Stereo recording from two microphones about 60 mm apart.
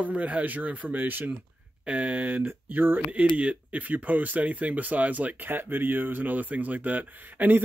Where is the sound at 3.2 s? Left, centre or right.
Right.